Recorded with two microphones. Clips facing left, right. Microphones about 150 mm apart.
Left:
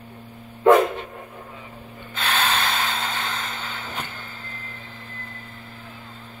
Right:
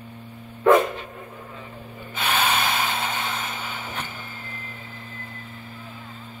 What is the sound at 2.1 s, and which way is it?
Snort, 5° right (ahead or behind).